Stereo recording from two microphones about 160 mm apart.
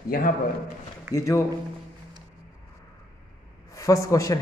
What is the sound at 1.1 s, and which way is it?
Speech, 20° left (ahead or behind).